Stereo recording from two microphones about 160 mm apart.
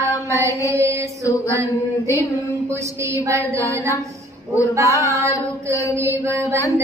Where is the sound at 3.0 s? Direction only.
20° right (ahead or behind).